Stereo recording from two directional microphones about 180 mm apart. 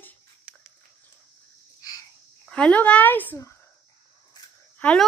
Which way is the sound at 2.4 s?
5° left (ahead or behind).